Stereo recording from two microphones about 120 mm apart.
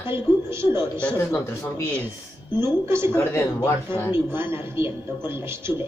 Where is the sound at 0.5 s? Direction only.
20° right (ahead or behind).